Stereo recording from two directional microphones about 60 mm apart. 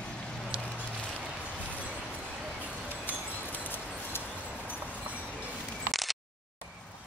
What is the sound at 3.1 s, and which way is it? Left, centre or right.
Wind chime, left.